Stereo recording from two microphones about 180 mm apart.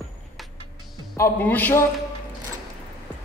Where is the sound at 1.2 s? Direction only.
10° left (ahead or behind).